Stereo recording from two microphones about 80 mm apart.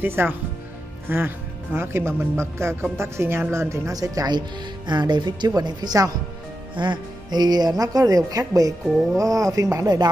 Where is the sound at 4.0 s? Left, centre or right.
Right.